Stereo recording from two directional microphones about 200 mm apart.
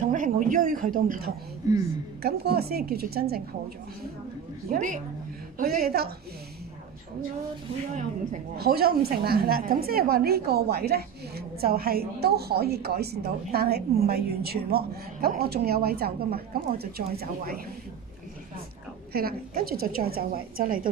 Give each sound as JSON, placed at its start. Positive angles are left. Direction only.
{"t": 0.0, "sound": "a woman's voice", "side_deg": -40}
{"t": 1.6, "sound": "a woman's voice", "side_deg": -15}
{"t": 2.2, "sound": "a woman's voice", "side_deg": -50}
{"t": 4.6, "sound": "a woman's voice", "side_deg": -40}
{"t": 8.5, "sound": "a woman's voice", "side_deg": -50}
{"t": 19.1, "sound": "a woman's voice", "side_deg": -50}